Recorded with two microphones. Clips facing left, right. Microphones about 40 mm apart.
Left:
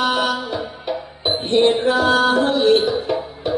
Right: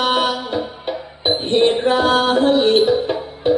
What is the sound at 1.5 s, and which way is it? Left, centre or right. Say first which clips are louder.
Music: even; right.